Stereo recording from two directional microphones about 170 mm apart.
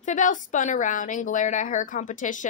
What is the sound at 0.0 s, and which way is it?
A woman's voice, 45° left (ahead or behind).